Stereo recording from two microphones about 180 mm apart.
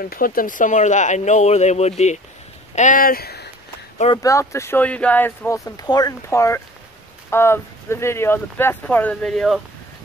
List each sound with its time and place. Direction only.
0.0 s speech: 50° left (ahead or behind)
4.1 s speech: 20° left (ahead or behind); by 9.6 s centre (ahead or behind)